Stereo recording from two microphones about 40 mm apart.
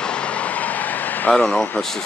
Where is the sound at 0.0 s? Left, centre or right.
Left.